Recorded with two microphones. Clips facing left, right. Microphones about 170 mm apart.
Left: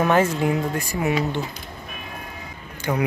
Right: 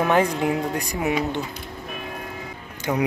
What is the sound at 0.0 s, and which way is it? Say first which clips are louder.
Speech: left 1 dB; 15° right (ahead or behind).